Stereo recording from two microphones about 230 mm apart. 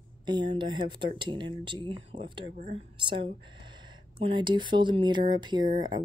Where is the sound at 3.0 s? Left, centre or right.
Right.